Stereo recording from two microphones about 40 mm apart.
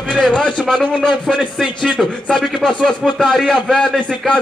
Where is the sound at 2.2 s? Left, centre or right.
Centre.